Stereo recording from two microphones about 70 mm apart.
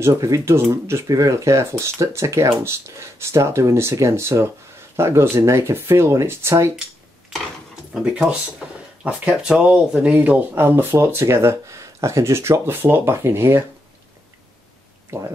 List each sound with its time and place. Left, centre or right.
0.0 s speech: right
1.0 s speech: right
7.3 s a sound: centre
7.9 s speech: centre
10.5 s speech: right
15.1 s speech: right